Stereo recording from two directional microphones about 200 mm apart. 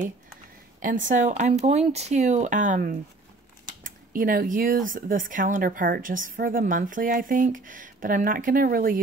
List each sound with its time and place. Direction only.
0.7 s speech: 40° right (ahead or behind)